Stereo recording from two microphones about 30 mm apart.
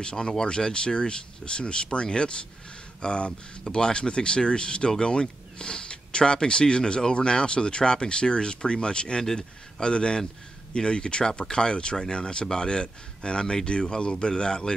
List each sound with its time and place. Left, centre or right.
0.0 s a man's voice: left
9.2 s a man's voice: centre